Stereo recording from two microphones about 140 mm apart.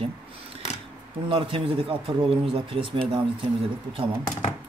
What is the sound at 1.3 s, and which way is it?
Speech, 40° right (ahead or behind).